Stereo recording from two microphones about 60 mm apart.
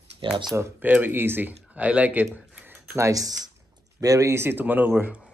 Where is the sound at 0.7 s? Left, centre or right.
Right.